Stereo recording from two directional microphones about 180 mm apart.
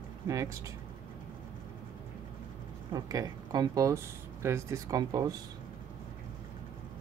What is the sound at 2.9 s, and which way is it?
Speech, 20° right (ahead or behind).